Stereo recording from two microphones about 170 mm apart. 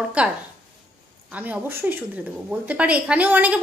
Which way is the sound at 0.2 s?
5° right (ahead or behind).